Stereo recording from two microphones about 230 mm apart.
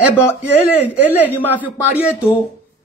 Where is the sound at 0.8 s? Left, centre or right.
Centre.